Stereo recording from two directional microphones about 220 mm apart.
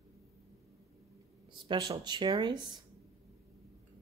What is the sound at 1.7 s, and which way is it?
Speech, 20° right (ahead or behind).